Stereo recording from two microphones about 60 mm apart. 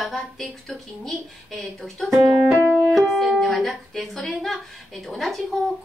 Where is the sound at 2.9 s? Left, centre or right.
Centre.